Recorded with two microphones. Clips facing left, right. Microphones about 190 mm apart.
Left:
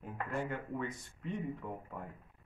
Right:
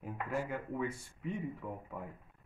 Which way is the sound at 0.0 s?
5° right (ahead or behind).